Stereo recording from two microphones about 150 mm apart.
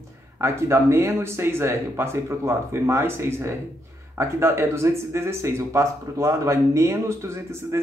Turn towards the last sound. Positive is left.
turn(degrees=-20)  # may be behind; listen again after turning